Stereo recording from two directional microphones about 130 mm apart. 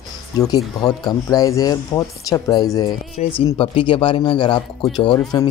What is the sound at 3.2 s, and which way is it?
Speech, 60° left (ahead or behind).